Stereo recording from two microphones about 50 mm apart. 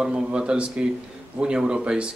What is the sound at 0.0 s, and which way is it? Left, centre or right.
Speech, centre.